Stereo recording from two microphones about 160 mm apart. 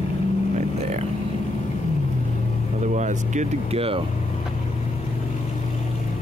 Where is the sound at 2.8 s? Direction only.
50° right (ahead or behind).